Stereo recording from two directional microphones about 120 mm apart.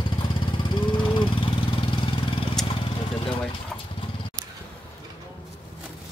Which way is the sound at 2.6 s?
5° left (ahead or behind).